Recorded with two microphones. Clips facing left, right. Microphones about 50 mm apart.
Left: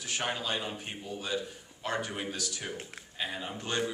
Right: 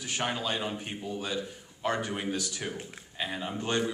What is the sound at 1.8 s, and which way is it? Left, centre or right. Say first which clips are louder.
Speech: right 3 dB; right.